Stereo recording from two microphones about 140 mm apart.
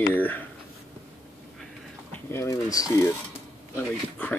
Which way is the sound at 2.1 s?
15° left (ahead or behind).